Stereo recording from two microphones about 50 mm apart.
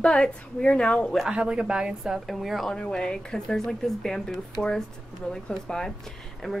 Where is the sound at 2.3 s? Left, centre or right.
Centre.